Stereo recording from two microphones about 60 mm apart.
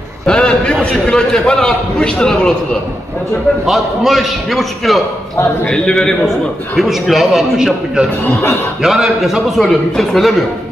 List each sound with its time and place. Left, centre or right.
0.3 s a sound: centre
1.0 s a man's voice: centre
3.6 s a man's voice: centre
6.8 s a man's voice: centre